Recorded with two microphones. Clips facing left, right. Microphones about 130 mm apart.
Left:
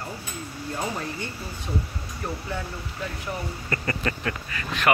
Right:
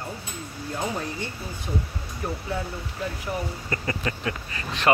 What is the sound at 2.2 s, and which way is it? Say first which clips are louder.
Speech: right 1 dB; 5° right (ahead or behind).